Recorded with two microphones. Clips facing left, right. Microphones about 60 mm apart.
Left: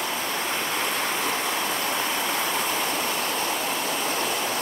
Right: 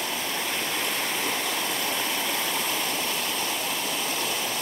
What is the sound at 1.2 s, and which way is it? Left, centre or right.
Waterfall, left.